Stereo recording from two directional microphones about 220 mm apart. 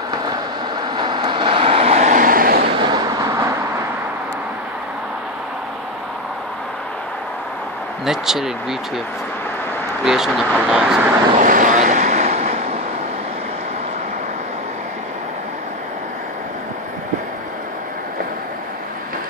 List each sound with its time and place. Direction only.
0.9 s vehicle: 20° right (ahead or behind); by 2.7 s 40° right (ahead or behind)
2.8 s a sound: 15° right (ahead or behind)
8.0 s speech: centre (ahead or behind)
10.0 s speech: centre (ahead or behind)
11.3 s vehicle: 35° right (ahead or behind)